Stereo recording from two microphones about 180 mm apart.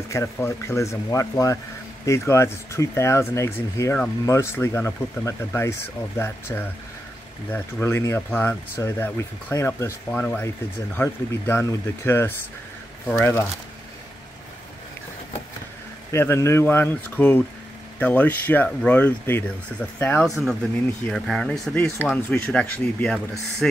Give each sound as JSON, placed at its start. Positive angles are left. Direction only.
{"t": 0.1, "sound": "speech", "side_deg": 15}
{"t": 16.1, "sound": "speech", "side_deg": 15}